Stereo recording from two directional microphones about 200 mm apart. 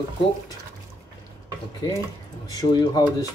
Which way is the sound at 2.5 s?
20° left (ahead or behind).